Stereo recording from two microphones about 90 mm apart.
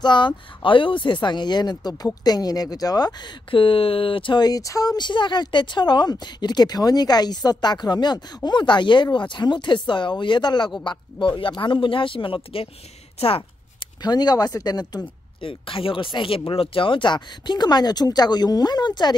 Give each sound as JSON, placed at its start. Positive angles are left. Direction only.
{"t": 0.0, "sound": "speech", "side_deg": 55}
{"t": 4.4, "sound": "speech", "side_deg": 45}
{"t": 4.9, "sound": "speech", "side_deg": 60}
{"t": 14.0, "sound": "speech", "side_deg": 50}
{"t": 15.4, "sound": "speech", "side_deg": 80}